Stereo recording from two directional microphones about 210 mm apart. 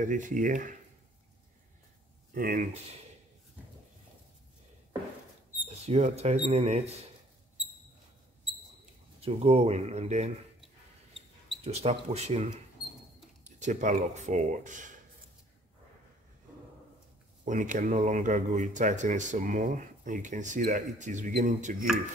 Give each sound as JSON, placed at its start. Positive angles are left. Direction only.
{"t": 0.0, "sound": "speech", "side_deg": -40}
{"t": 2.3, "sound": "speech", "side_deg": -40}
{"t": 5.7, "sound": "speech", "side_deg": -30}
{"t": 9.2, "sound": "speech", "side_deg": -30}
{"t": 11.6, "sound": "speech", "side_deg": -30}
{"t": 17.5, "sound": "speech", "side_deg": -35}